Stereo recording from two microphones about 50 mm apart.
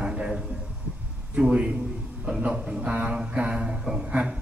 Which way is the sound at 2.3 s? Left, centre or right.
Right.